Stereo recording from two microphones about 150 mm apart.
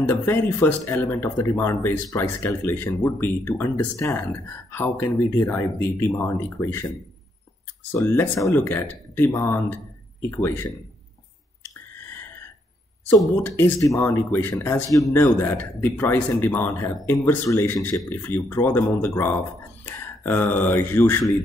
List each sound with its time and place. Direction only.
0.0 s speech: 15° left (ahead or behind)
8.0 s speech: 20° left (ahead or behind)
13.4 s speech: 20° left (ahead or behind)